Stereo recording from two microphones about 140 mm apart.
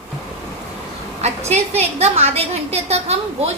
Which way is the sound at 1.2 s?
50° right (ahead or behind).